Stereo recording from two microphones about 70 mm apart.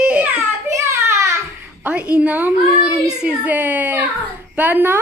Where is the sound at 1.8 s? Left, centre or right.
Centre.